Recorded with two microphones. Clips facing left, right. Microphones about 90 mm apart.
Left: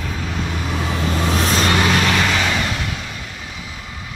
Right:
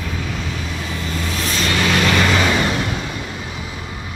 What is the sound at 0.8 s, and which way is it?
Vehicle, 70° left (ahead or behind).